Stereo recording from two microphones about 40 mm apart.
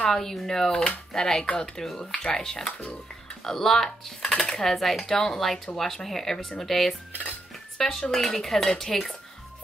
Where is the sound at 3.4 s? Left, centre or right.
Centre.